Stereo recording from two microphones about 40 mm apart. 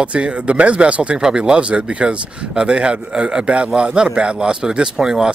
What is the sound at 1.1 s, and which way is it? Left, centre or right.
Speech, centre.